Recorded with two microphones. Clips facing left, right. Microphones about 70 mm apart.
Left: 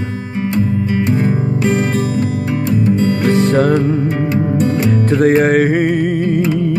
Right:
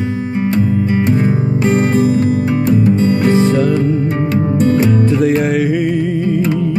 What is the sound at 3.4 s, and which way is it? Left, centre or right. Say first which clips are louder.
Music: even; left.